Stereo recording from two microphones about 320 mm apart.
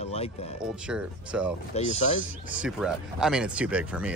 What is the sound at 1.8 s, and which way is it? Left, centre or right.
Speech, left.